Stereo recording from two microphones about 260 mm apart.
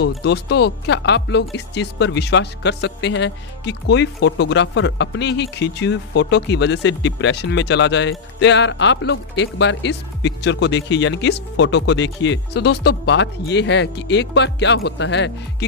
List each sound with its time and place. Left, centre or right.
0.0 s speech: left